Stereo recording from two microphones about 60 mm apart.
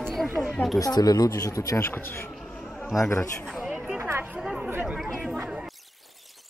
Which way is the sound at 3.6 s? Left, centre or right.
Centre.